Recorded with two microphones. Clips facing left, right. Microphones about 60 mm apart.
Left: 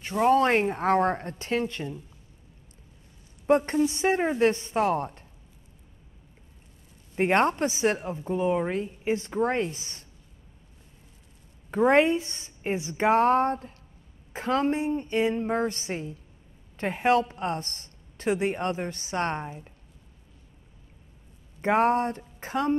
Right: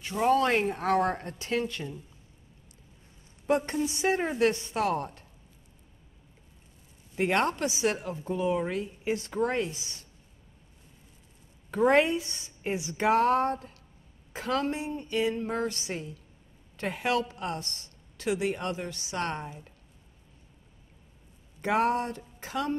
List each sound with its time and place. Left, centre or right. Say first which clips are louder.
0.3 s a woman's voice: left 2 dB; left
3.4 s a woman's voice: left 5 dB; left
4.2 s a woman's voice: left 4 dB; centre
4.5 s a woman's voice: left 3 dB; left
7.2 s a woman's voice: left 4 dB; left
11.7 s a woman's voice: left 2 dB; left
21.5 s a woman's voice: left 4 dB; left